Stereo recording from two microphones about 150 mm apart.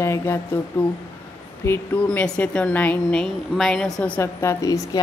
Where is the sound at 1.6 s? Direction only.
15° left (ahead or behind).